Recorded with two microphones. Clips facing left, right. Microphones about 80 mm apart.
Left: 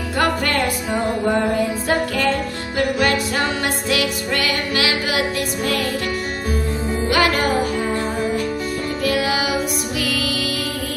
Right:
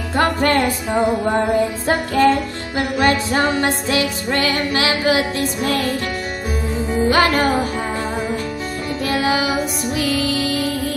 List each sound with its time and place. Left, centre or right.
0.2 s music: right
1.9 s music: right
7.1 s music: right
9.0 s music: right